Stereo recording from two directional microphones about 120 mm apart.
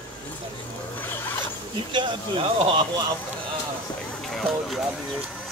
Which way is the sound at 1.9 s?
40° right (ahead or behind).